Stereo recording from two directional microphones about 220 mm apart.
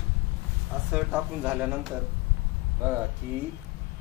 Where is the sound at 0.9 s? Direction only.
5° right (ahead or behind).